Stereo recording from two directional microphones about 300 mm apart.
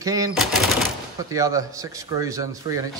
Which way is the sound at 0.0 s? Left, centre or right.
Centre.